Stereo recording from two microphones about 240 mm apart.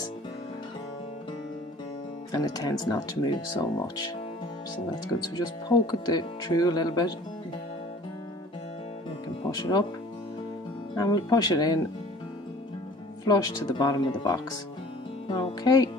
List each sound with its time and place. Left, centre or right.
2.3 s speech: centre
5.3 s speech: centre
9.5 s speech: centre
11.0 s speech: centre
13.2 s speech: centre